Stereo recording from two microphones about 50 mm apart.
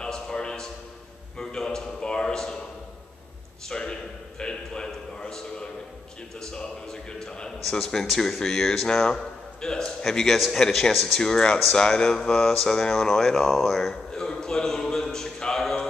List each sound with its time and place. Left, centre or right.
0.0 s a sound: centre
3.6 s a sound: centre
6.4 s music: centre
7.7 s a man's voice: centre
11.1 s speech: centre
15.6 s mantra: centre